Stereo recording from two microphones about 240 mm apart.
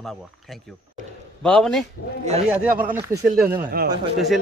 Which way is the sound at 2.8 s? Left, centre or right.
Centre.